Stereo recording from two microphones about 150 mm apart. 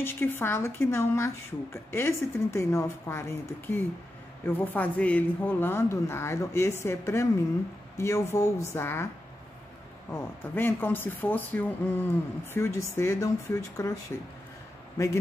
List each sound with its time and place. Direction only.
0.0 s speech: 15° left (ahead or behind)
10.1 s speech: 15° left (ahead or behind)